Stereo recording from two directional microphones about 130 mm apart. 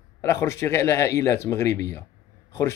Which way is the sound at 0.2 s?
20° left (ahead or behind).